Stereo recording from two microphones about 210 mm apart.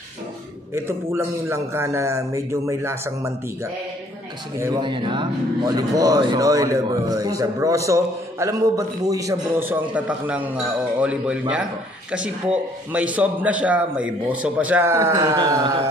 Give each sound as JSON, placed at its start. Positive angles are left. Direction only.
{"t": 0.7, "sound": "speech", "side_deg": -10}
{"t": 4.6, "sound": "speech", "side_deg": -20}